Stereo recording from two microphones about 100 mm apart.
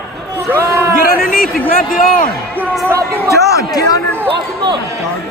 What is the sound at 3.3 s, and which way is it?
Speech, 30° left (ahead or behind).